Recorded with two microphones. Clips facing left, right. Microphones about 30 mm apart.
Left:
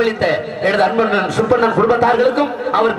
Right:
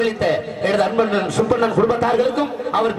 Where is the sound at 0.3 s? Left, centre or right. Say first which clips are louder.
Left 3 dB; left.